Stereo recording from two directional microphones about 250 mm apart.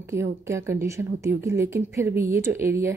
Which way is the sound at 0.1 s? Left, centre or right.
Centre.